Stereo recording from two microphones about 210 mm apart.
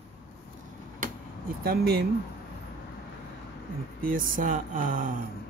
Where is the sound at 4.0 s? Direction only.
40° right (ahead or behind).